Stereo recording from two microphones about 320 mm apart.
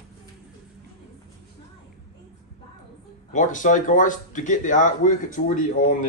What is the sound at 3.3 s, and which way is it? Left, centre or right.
Speech, left.